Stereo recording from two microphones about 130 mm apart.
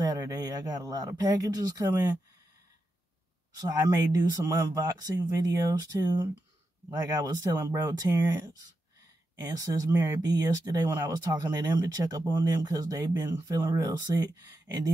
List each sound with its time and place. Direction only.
0.0 s speech: 30° right (ahead or behind)
3.5 s speech: 30° right (ahead or behind)
6.9 s speech: 30° right (ahead or behind)